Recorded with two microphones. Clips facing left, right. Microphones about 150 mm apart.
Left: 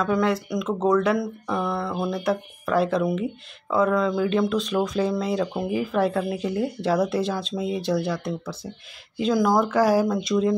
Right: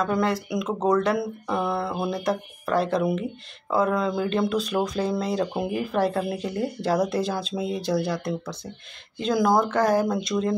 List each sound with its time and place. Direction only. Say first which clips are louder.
0.0 s speech: left 1 dB; centre (ahead or behind)
10.3 s speech: left 7 dB; 10° right (ahead or behind)